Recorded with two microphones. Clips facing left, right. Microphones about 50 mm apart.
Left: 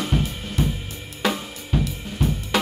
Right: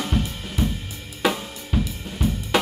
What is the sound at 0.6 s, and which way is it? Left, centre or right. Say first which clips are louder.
Drum kit: left 1 dB; centre.